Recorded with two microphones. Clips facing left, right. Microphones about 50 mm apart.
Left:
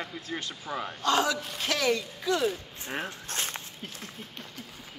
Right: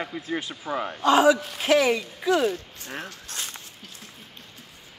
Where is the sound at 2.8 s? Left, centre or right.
Centre.